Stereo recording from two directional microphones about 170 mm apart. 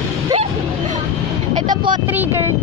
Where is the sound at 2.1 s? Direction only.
10° right (ahead or behind).